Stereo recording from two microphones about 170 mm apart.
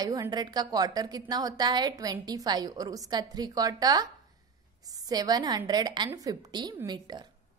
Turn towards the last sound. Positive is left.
turn(degrees=-25)  # may be behind; listen again after turning